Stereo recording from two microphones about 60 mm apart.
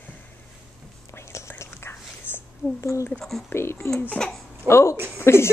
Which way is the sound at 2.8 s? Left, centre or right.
Left.